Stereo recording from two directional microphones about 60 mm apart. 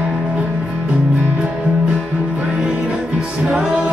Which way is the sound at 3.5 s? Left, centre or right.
Centre.